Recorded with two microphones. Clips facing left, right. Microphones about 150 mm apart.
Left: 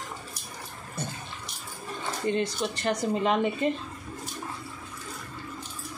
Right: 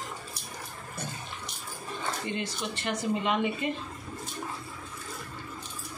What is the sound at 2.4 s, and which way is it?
Speech, 35° left (ahead or behind).